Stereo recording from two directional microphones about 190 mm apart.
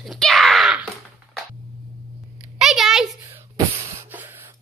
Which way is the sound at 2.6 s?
Centre (ahead or behind).